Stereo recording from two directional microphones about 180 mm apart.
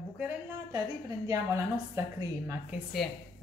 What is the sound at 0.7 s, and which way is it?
Speech, 20° right (ahead or behind).